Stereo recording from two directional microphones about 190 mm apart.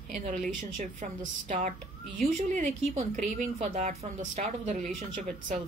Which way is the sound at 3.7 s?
35° right (ahead or behind).